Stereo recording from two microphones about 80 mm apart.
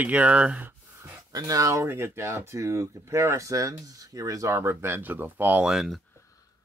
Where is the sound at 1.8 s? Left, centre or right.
Right.